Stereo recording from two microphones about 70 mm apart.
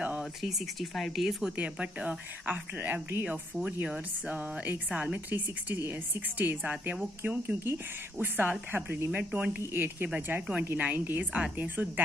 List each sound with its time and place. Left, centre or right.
0.2 s speech: centre
1.6 s a woman's voice: centre
9.2 s speech: centre